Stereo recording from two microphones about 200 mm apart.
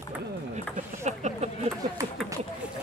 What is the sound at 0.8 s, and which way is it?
Speech, 35° right (ahead or behind).